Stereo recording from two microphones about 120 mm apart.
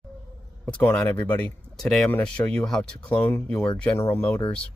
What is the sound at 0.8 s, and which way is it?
Speech, 15° left (ahead or behind).